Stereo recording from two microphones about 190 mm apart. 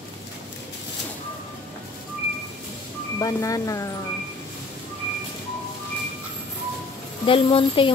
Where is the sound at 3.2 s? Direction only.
20° left (ahead or behind).